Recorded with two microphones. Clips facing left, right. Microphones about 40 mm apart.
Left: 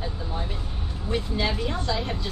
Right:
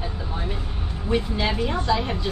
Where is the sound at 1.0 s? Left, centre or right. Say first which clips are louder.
Right 3 dB; centre.